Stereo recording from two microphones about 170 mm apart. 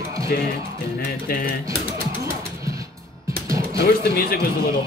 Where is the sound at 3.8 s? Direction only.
60° left (ahead or behind).